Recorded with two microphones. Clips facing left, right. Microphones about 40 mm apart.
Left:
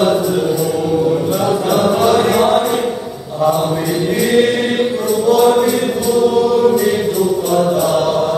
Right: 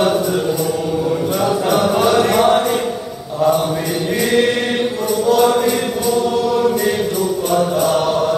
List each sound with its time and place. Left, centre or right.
1.7 s music: centre
5.2 s music: centre
6.2 s chant: centre